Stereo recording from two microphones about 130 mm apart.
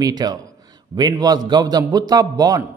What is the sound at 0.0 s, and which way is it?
A man's voice, 30° right (ahead or behind).